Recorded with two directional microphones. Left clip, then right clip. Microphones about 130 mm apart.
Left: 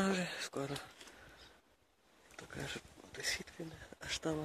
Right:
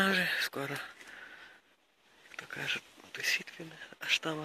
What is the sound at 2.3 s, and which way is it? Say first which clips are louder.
Speech: right 9 dB; 25° left (ahead or behind).